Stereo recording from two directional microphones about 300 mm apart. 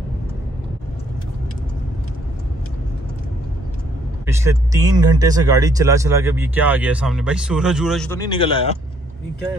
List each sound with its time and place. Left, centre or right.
4.3 s speech: centre
8.3 s speech: centre